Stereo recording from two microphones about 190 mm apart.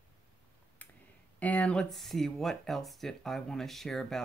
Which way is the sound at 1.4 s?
10° left (ahead or behind).